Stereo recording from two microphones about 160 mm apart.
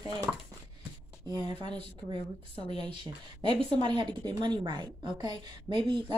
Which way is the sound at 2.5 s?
35° left (ahead or behind).